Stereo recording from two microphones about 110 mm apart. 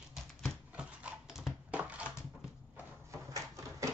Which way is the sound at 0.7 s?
10° right (ahead or behind).